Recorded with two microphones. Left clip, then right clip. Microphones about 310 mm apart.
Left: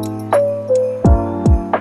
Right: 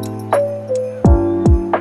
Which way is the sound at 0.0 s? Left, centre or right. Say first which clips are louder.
Left 2 dB; centre.